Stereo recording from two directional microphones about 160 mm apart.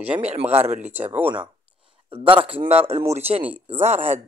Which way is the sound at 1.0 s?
10° right (ahead or behind).